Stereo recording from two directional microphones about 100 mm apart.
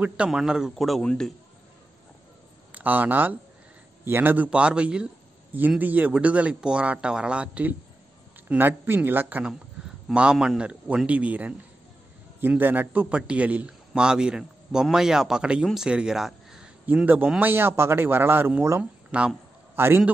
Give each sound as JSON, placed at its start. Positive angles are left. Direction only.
{"t": 0.0, "sound": "a man's voice", "side_deg": -5}
{"t": 2.7, "sound": "a man's voice", "side_deg": -15}
{"t": 10.0, "sound": "a man's voice", "side_deg": -5}
{"t": 16.8, "sound": "a man's voice", "side_deg": -15}
{"t": 18.8, "sound": "speech", "side_deg": -10}
{"t": 19.7, "sound": "a man's voice", "side_deg": -25}